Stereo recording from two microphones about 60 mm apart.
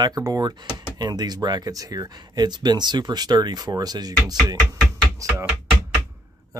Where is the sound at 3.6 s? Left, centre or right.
Right.